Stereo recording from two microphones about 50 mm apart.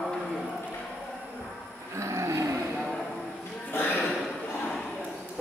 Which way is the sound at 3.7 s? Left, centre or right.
Left.